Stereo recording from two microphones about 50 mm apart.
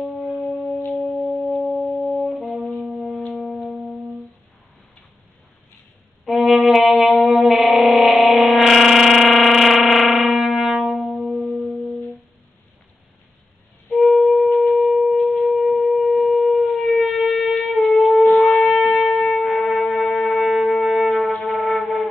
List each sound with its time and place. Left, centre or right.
1.2 s music: centre
2.2 s brass instrument: centre
3.3 s music: centre
6.2 s music: centre
13.8 s wind instrument: centre
18.3 s shofar: centre
21.5 s music: centre